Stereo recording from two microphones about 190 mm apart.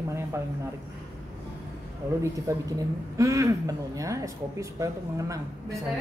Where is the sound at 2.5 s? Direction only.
15° right (ahead or behind).